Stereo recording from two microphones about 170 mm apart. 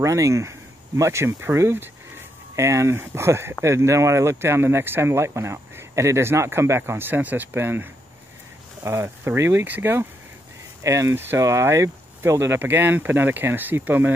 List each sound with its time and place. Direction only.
0.0 s speech: 20° right (ahead or behind)